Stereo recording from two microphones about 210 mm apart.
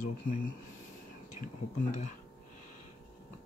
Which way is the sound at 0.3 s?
40° left (ahead or behind).